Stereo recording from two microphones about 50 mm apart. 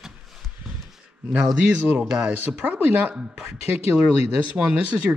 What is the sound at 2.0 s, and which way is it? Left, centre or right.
Speech, centre.